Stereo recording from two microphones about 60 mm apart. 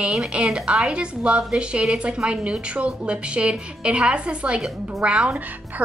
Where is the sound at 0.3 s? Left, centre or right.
Centre.